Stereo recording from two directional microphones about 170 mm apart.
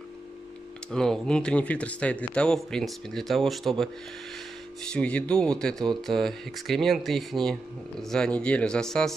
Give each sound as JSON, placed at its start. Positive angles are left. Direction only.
{"t": 0.9, "sound": "speech", "side_deg": 5}